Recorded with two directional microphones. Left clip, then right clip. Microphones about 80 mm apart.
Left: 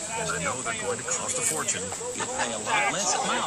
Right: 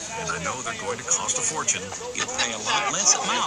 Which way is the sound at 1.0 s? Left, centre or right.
Right.